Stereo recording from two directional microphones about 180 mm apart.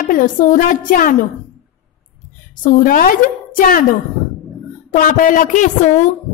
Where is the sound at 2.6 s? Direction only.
50° left (ahead or behind).